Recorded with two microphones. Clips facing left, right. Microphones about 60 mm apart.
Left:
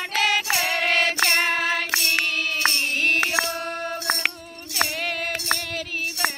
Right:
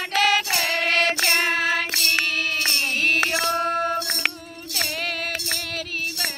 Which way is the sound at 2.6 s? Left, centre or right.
Left.